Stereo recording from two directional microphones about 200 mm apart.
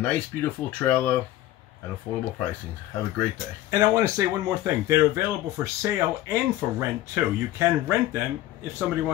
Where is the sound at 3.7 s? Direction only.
15° right (ahead or behind).